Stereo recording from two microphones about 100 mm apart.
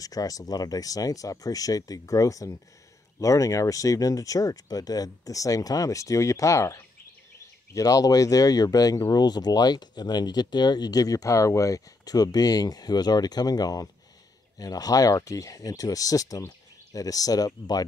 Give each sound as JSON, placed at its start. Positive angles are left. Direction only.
{"t": 0.0, "sound": "speech", "side_deg": 35}